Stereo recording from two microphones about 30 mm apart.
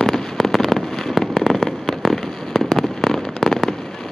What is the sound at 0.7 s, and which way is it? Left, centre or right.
Fireworks, centre.